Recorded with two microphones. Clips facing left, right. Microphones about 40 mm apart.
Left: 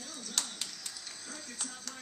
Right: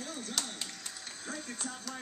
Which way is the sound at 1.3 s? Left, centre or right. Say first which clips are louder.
Right 6 dB; right.